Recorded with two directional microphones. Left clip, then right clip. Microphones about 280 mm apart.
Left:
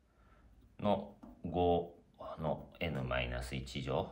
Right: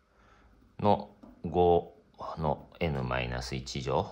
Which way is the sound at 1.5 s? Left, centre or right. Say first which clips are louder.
Right 8 dB; right.